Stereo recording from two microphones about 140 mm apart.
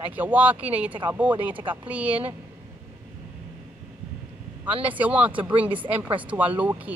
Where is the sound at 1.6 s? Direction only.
35° right (ahead or behind).